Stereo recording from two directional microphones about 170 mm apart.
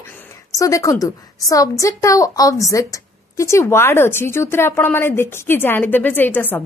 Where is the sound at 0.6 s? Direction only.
20° left (ahead or behind).